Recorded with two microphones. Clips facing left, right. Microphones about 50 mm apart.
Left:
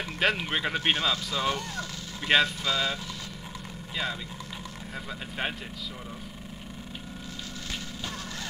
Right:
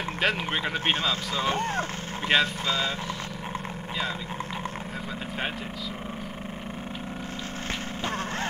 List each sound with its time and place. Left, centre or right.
0.2 s speech: centre
1.3 s speech: right
2.3 s speech: centre
2.6 s speech: right